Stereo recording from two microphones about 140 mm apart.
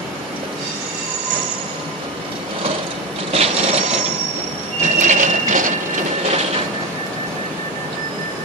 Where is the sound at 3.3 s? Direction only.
45° right (ahead or behind).